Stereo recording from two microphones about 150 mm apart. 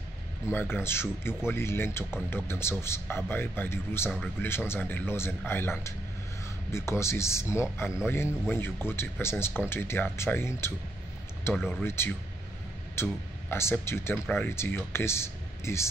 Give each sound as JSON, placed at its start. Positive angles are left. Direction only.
{"t": 0.5, "sound": "a man's voice", "side_deg": 15}
{"t": 11.7, "sound": "a man's voice", "side_deg": 15}